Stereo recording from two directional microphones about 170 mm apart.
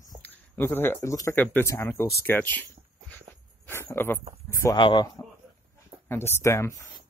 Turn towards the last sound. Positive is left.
turn(degrees=15)  # may be behind; listen again after turning